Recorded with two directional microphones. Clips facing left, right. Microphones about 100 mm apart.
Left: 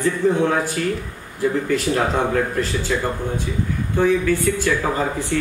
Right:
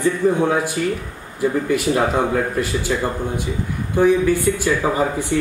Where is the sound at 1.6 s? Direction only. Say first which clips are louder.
Right 2 dB; 10° right (ahead or behind).